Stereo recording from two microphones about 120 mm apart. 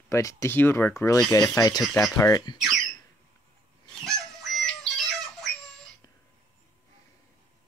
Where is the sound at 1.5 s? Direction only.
35° left (ahead or behind).